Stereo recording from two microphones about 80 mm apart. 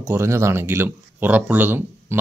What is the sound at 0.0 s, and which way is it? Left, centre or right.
Speech, right.